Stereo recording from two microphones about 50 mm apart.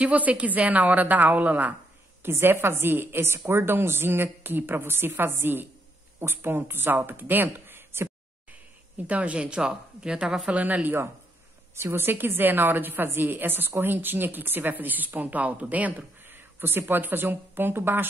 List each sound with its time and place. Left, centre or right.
0.0 s speech: right
2.2 s a woman's voice: right
7.5 s a sound: right
8.9 s speech: right; by 10.5 s centre
10.5 s speech: right
11.7 s a woman's voice: right
16.3 s speech: right